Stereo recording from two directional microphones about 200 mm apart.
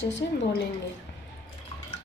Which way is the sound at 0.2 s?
55° left (ahead or behind).